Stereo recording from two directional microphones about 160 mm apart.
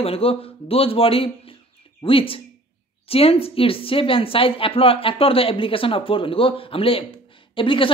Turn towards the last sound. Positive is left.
turn(degrees=30)  # may be behind; listen again after turning